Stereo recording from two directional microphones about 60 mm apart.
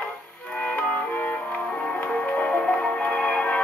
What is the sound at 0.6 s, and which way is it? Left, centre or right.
Music, left.